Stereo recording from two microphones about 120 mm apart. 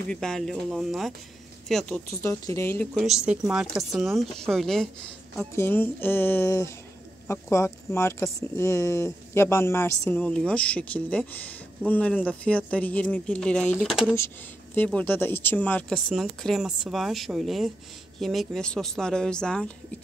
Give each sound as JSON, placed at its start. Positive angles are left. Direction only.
{"t": 0.1, "sound": "speech", "side_deg": 5}
{"t": 2.2, "sound": "speech", "side_deg": 25}
{"t": 2.9, "sound": "speech", "side_deg": -5}
{"t": 5.4, "sound": "speech", "side_deg": 15}